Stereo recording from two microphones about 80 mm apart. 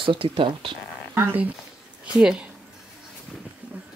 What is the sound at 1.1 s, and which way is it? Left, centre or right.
Speech, right.